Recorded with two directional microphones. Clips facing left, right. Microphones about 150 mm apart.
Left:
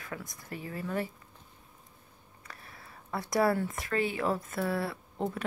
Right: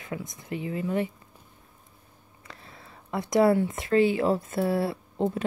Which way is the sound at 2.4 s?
25° right (ahead or behind).